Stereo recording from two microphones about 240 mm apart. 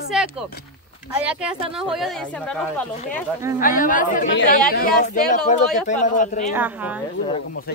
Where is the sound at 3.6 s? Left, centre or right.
Left.